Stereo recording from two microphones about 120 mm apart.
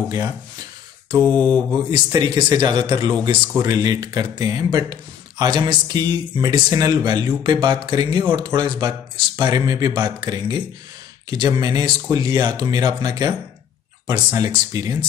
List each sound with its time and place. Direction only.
1.1 s speech: 35° right (ahead or behind)
14.4 s speech: 30° right (ahead or behind)